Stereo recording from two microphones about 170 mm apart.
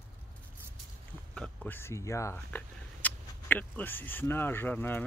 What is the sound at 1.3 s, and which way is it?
Speech, 5° left (ahead or behind).